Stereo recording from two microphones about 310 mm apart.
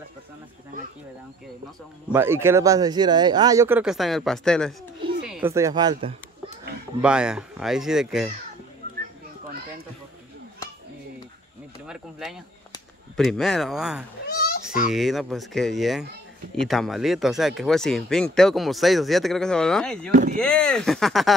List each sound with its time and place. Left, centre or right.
2.1 s speech: centre
7.0 s speech: centre
11.9 s speech: centre
14.2 s a sound: left
14.9 s speech: centre
20.1 s speech: right
20.3 s speech: centre